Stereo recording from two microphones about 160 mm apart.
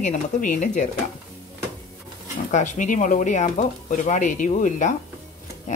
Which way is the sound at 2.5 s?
50° left (ahead or behind).